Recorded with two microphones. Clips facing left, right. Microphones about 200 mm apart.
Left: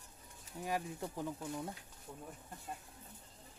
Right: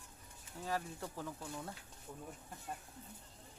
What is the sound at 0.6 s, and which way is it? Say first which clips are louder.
Speech: left 2 dB; 15° left (ahead or behind).